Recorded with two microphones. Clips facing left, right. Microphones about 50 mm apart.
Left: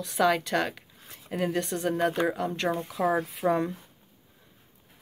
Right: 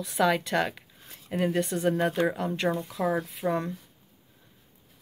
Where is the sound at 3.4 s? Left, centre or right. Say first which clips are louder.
Left 3 dB; left.